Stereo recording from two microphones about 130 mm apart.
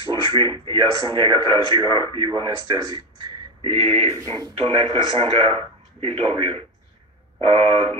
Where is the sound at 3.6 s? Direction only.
45° right (ahead or behind).